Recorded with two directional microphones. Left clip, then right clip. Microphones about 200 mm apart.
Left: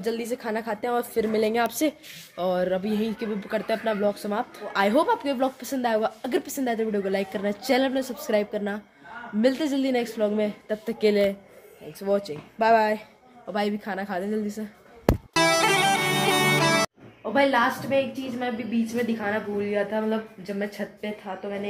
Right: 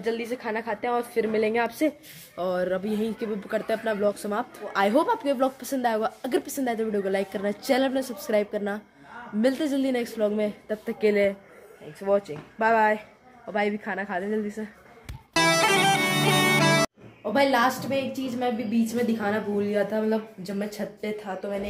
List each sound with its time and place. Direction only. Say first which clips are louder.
0.0 s a woman's voice: even; 15° left (ahead or behind)
2.3 s speech: left 2 dB; centre (ahead or behind)
11.0 s a woman's voice: even; 15° left (ahead or behind)
12.3 s a woman's voice: left 3 dB; 5° left (ahead or behind)
15.3 s bagpipes: right 1 dB; centre (ahead or behind)
17.3 s a woman's voice: even; 10° right (ahead or behind)